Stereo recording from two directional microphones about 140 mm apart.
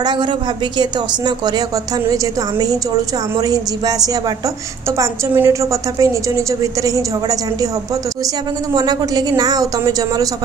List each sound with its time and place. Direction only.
0.0 s a woman's voice: 35° right (ahead or behind)
3.3 s a woman's voice: 25° right (ahead or behind)
8.7 s a woman's voice: 30° right (ahead or behind)